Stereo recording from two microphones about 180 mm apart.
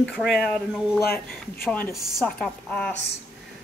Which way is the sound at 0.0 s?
Centre (ahead or behind).